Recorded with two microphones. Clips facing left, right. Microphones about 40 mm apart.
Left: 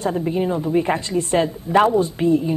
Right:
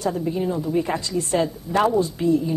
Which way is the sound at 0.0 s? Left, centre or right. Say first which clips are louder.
Left 3 dB; left.